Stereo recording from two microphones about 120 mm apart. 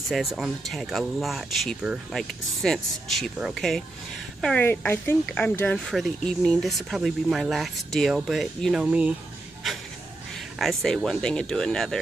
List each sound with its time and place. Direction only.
0.1 s speech: centre (ahead or behind)
4.6 s speech: 15° left (ahead or behind)
5.9 s speech: centre (ahead or behind)
8.8 s speech: 10° right (ahead or behind)
10.6 s speech: centre (ahead or behind)